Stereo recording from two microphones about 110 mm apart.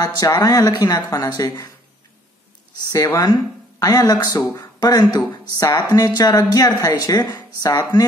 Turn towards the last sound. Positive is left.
turn(degrees=35)  # may be behind; listen again after turning